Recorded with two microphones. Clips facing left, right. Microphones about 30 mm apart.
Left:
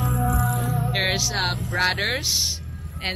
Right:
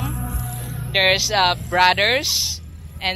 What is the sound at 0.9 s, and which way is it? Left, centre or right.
Speech, centre.